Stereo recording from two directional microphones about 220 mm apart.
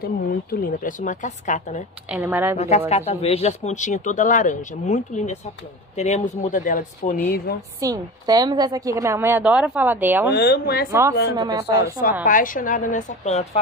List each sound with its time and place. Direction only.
0.0 s speech: 40° left (ahead or behind)
2.0 s a woman's voice: 5° right (ahead or behind)
2.5 s speech: 30° left (ahead or behind); by 7.6 s 45° left (ahead or behind)
7.8 s a woman's voice: 15° right (ahead or behind)
10.3 s speech: 45° left (ahead or behind)
10.9 s a woman's voice: 10° right (ahead or behind)
12.3 s speech: 40° left (ahead or behind)